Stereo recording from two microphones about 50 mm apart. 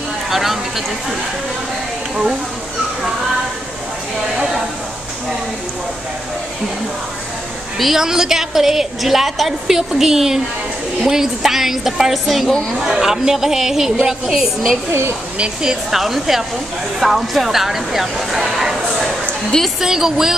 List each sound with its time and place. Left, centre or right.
0.3 s speech: centre
4.4 s a sound: centre
7.8 s a woman's voice: centre
14.9 s speech: right
15.6 s speech: centre
19.8 s a woman's voice: centre